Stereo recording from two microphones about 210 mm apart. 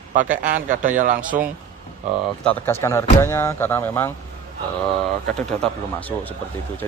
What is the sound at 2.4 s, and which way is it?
Speech, 10° left (ahead or behind).